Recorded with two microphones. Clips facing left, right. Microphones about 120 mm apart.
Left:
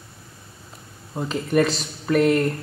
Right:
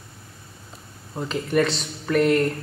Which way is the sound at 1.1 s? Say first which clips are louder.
Left 1 dB; 5° left (ahead or behind).